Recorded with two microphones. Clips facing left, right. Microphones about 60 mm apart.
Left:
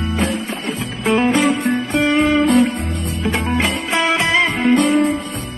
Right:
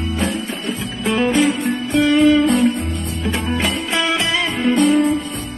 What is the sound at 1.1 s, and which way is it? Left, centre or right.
Music, left.